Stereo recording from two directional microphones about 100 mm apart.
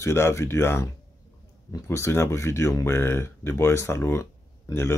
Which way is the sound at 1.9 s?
25° left (ahead or behind).